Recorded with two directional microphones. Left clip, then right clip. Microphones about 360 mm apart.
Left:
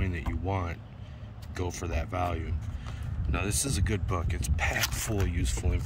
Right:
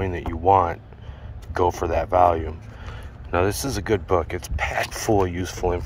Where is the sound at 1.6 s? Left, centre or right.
Right.